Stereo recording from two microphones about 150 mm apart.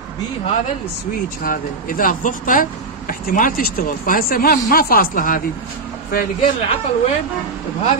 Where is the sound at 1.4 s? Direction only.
70° left (ahead or behind).